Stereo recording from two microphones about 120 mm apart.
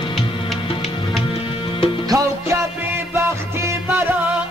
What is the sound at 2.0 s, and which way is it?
Music, 25° right (ahead or behind).